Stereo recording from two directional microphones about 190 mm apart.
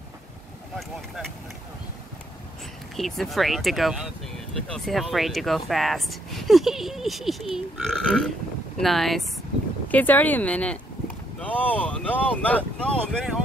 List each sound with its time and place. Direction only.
0.7 s speech: centre (ahead or behind)
3.0 s speech: centre (ahead or behind)